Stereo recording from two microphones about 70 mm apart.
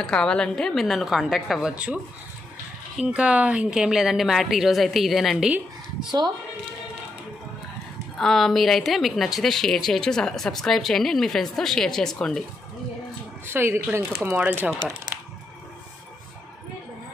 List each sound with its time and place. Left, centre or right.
0.0 s a woman's voice: centre
3.0 s a woman's voice: centre
8.2 s a woman's voice: centre
13.5 s speech: right